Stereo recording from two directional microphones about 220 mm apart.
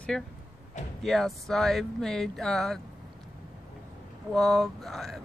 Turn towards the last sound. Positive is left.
turn(degrees=0)  # may be behind; listen again after turning